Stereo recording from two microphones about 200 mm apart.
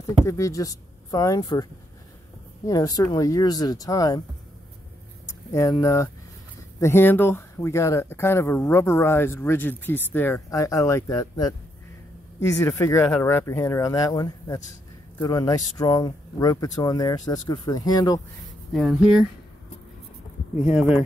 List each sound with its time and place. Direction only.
0.2 s speech: 15° left (ahead or behind)
5.5 s speech: 15° left (ahead or behind)
18.7 s speech: centre (ahead or behind)
20.6 s speech: 5° right (ahead or behind)